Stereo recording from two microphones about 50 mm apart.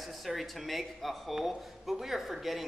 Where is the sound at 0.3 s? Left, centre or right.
Centre.